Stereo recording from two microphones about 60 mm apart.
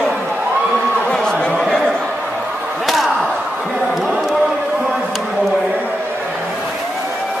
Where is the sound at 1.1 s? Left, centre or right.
Centre.